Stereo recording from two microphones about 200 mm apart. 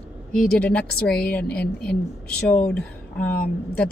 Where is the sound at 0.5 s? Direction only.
5° left (ahead or behind).